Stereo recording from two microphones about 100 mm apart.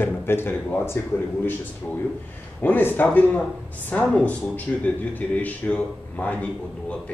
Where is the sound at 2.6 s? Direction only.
20° left (ahead or behind).